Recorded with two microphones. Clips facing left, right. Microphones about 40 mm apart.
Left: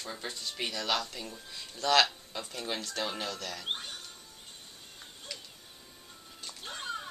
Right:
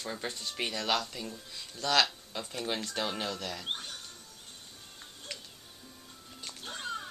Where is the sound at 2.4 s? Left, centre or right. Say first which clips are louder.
Right 2 dB; centre.